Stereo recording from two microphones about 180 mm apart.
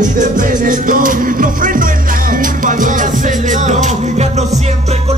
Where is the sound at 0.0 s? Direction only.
45° right (ahead or behind).